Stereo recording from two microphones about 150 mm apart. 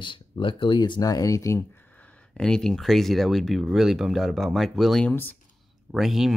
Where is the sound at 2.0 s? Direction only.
5° left (ahead or behind).